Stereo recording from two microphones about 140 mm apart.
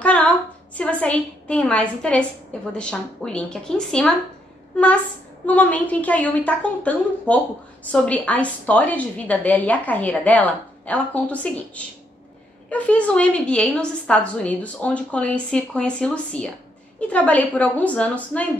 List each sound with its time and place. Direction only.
0.0 s a sound: 10° left (ahead or behind)
0.7 s a woman's voice: 10° left (ahead or behind)
5.5 s a woman's voice: 10° left (ahead or behind)